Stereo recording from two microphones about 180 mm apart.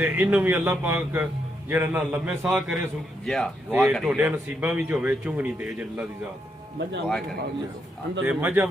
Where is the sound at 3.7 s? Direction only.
10° right (ahead or behind).